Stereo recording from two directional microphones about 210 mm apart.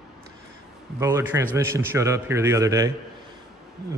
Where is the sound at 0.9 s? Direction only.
15° right (ahead or behind).